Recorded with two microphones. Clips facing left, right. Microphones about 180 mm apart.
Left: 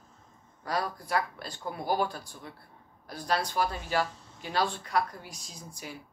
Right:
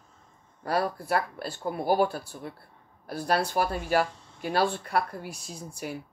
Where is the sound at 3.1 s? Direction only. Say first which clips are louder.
Right 4 dB; 55° right (ahead or behind).